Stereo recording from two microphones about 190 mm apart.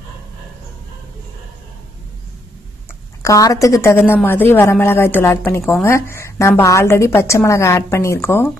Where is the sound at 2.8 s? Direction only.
15° left (ahead or behind).